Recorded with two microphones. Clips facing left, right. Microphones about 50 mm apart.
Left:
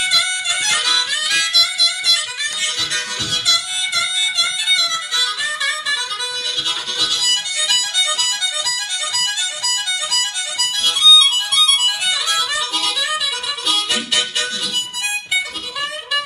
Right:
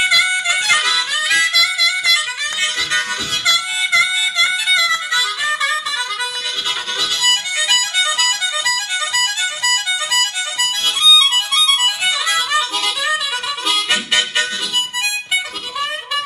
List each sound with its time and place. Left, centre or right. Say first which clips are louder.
0.0 s harmonica: right 5 dB; right
3.4 s music: right 6 dB; right
7.0 s harmonica: right 3 dB; right